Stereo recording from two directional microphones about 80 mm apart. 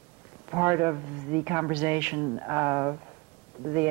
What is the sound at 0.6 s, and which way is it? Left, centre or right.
Speech, right.